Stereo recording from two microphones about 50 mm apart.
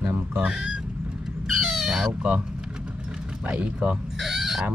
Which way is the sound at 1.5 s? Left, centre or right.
Centre.